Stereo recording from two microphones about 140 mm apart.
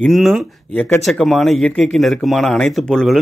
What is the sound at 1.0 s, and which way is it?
A man's voice, centre (ahead or behind).